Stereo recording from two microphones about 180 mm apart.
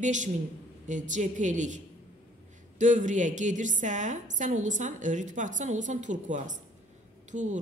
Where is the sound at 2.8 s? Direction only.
45° right (ahead or behind).